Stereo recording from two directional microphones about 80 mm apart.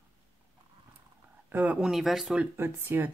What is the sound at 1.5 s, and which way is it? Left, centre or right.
Speech, centre.